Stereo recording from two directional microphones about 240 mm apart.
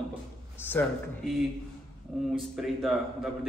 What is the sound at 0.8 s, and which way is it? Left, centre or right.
Speech, centre.